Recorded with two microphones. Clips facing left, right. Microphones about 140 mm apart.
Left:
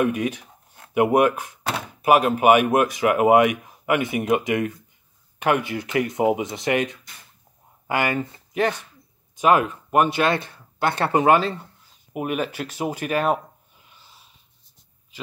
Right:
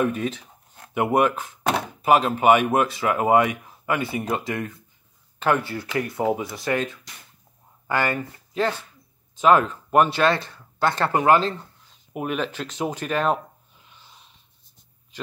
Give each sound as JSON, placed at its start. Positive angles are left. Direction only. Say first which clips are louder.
{"t": 0.0, "sound": "speech", "louder": "left 2 dB", "side_deg": 15}
{"t": 12.1, "sound": "speech", "louder": "left 1 dB", "side_deg": 5}
{"t": 13.9, "sound": "wheeze", "louder": "right 1 dB", "side_deg": 5}